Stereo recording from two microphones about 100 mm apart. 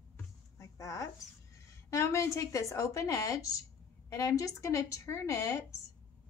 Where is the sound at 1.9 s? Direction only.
30° left (ahead or behind).